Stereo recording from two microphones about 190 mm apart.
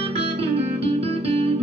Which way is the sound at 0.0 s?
30° right (ahead or behind).